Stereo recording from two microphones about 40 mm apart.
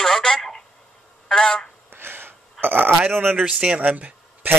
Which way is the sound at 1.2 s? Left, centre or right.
Centre.